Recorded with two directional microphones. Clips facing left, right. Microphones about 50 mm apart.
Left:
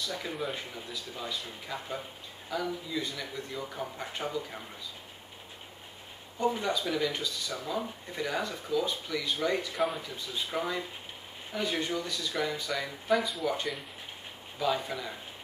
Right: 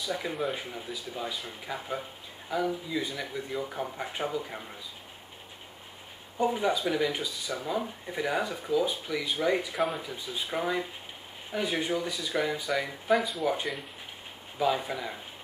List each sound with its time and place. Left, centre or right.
0.0 s speech: centre
0.4 s speech: centre
1.1 s speech: centre
6.5 s speech: centre
14.6 s speech: centre